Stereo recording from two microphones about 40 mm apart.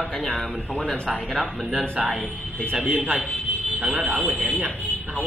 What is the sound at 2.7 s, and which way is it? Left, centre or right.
Speech, right.